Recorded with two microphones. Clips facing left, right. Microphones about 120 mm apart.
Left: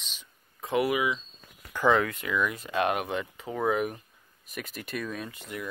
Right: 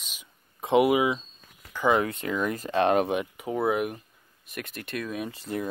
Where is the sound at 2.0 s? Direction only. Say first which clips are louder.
Right 1 dB; 35° right (ahead or behind).